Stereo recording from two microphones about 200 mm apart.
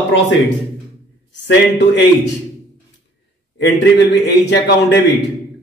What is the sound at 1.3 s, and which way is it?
A man's voice, 60° left (ahead or behind).